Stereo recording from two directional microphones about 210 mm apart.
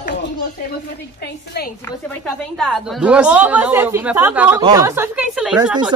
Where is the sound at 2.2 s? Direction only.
Centre (ahead or behind).